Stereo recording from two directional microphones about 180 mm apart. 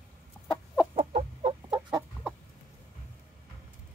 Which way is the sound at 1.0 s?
30° right (ahead or behind).